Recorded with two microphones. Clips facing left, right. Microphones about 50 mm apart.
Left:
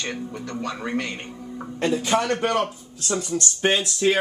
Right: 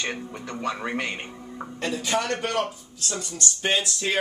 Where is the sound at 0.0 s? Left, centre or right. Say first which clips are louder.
Left 1 dB; centre.